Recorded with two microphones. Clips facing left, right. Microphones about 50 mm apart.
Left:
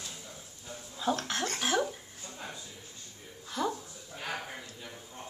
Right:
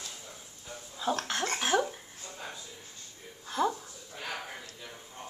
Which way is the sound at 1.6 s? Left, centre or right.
Centre.